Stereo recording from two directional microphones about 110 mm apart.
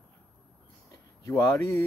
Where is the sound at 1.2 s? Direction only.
30° left (ahead or behind).